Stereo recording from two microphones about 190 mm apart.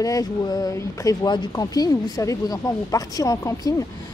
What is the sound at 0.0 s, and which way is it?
A woman's voice, 20° left (ahead or behind).